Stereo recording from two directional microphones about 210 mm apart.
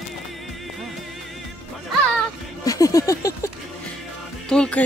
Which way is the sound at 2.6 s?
15° left (ahead or behind).